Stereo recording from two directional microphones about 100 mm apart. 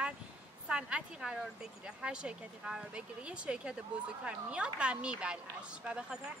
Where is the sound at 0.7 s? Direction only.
10° right (ahead or behind).